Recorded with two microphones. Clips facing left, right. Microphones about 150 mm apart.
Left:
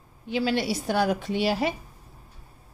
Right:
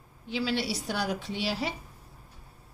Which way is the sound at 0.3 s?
55° left (ahead or behind).